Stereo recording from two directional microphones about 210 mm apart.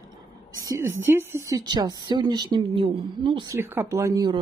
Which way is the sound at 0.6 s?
15° right (ahead or behind).